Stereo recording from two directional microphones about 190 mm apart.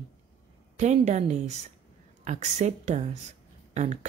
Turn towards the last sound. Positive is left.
turn(degrees=-35)  # may be behind; listen again after turning